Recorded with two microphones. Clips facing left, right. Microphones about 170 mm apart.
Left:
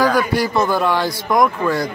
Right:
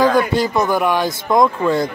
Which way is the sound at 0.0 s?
20° right (ahead or behind).